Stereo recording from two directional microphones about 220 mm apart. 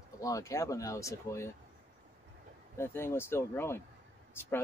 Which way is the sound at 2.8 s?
10° left (ahead or behind).